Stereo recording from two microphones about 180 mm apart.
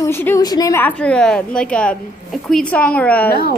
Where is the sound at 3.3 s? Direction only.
60° left (ahead or behind).